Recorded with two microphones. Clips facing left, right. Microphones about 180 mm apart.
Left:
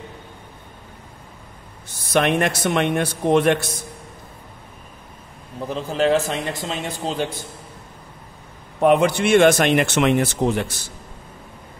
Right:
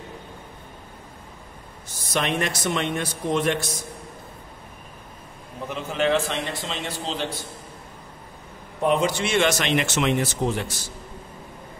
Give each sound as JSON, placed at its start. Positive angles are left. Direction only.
{"t": 2.1, "sound": "a man's voice", "side_deg": 55}
{"t": 5.7, "sound": "a man's voice", "side_deg": 35}
{"t": 8.8, "sound": "a man's voice", "side_deg": 60}